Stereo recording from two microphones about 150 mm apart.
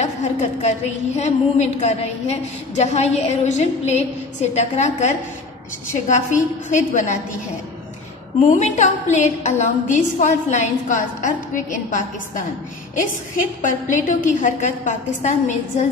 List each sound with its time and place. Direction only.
0.0 s a woman's voice: 50° left (ahead or behind)
8.4 s a woman's voice: 50° left (ahead or behind)